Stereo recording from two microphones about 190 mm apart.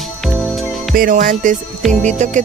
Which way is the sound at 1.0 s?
45° right (ahead or behind).